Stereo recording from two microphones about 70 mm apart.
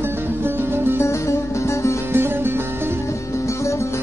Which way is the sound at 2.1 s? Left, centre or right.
Right.